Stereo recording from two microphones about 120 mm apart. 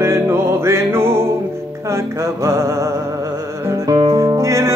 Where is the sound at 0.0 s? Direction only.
20° right (ahead or behind).